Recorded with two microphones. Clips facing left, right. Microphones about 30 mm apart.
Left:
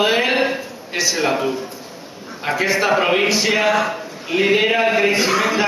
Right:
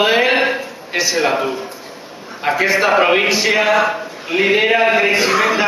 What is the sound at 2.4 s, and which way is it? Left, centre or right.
A man's voice, centre.